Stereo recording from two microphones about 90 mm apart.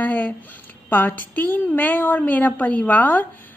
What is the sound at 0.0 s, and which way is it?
A woman's voice, 20° left (ahead or behind).